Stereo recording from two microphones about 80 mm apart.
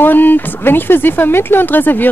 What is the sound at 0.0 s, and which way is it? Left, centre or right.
A woman's voice, left.